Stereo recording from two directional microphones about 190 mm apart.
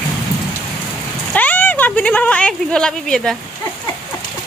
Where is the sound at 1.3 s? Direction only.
10° left (ahead or behind).